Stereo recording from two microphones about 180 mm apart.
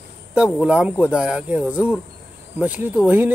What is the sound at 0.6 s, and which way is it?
Speech, 5° right (ahead or behind).